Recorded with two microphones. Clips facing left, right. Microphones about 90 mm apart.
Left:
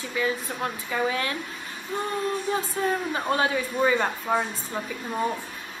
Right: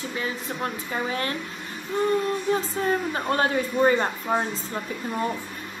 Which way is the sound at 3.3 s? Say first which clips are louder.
Right 2 dB; 40° right (ahead or behind).